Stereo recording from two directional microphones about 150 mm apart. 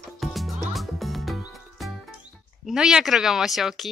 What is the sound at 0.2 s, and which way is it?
Music, centre (ahead or behind).